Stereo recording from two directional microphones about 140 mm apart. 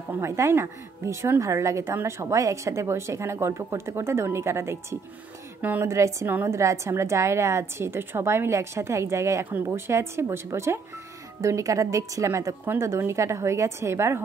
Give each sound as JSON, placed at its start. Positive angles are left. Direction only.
{"t": 0.2, "sound": "a woman's voice", "side_deg": -20}